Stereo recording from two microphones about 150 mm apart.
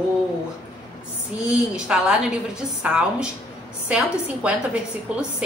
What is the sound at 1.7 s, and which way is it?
A woman's voice, 5° right (ahead or behind).